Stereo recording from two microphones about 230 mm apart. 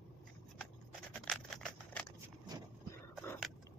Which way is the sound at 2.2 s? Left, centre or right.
Centre.